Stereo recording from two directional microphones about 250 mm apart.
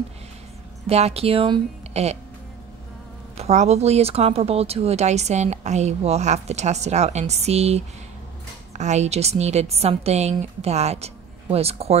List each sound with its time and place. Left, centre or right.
0.8 s speech: right
3.3 s speech: right